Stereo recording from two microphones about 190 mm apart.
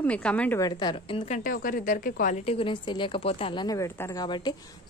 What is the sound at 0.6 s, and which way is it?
A woman's voice, 20° left (ahead or behind).